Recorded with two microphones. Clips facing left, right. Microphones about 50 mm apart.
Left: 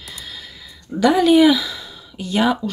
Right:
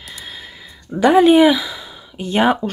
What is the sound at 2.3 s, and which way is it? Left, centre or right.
Speech, right.